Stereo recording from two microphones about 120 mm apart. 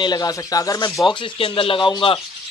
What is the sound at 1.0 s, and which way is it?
Speech, 45° left (ahead or behind).